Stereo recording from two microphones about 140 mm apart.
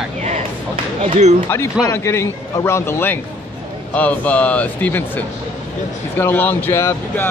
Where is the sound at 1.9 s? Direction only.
20° left (ahead or behind).